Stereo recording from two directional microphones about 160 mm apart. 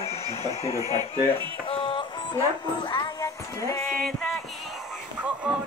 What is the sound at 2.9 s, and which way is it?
Music, 25° left (ahead or behind).